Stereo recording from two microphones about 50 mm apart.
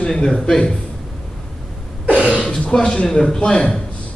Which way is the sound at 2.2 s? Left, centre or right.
Left.